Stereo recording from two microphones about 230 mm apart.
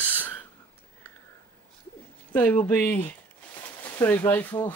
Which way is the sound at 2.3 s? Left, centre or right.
Centre.